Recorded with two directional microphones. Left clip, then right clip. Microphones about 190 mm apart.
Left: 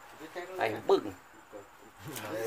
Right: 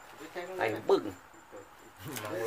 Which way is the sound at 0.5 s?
25° left (ahead or behind).